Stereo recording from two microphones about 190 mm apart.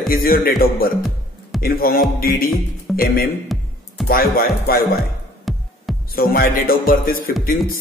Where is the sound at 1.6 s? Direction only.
50° left (ahead or behind).